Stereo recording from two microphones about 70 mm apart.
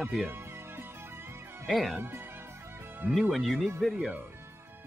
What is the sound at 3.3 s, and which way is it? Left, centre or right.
Speech, centre.